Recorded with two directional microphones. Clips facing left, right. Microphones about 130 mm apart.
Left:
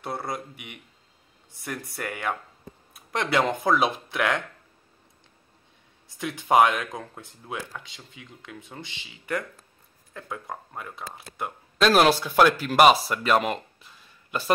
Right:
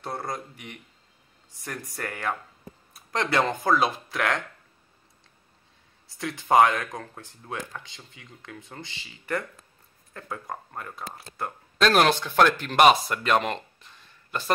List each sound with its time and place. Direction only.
0.0 s speech: 5° left (ahead or behind)
2.0 s speech: 10° left (ahead or behind)
6.1 s speech: 15° left (ahead or behind)
8.1 s speech: 15° left (ahead or behind)